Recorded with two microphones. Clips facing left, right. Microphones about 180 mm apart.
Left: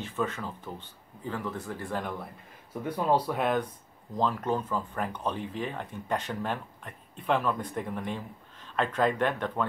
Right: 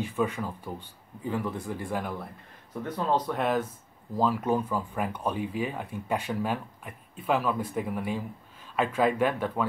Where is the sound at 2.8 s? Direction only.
10° left (ahead or behind).